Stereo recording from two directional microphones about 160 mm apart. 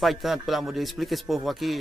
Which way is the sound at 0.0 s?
Centre (ahead or behind).